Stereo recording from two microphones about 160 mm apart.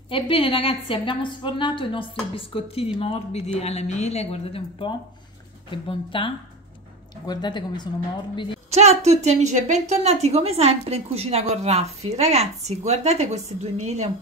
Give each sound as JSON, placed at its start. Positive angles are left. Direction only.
{"t": 0.1, "sound": "speech", "side_deg": 35}
{"t": 8.6, "sound": "a woman's voice", "side_deg": -45}